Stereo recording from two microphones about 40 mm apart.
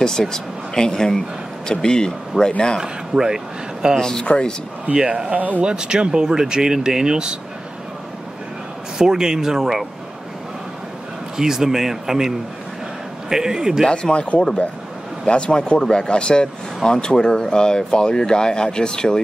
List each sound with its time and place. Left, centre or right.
0.0 s speech: centre
2.8 s speech: centre
4.0 s speech: centre
4.9 s speech: right
8.9 s speech: centre
11.3 s speech: centre
13.8 s speech: left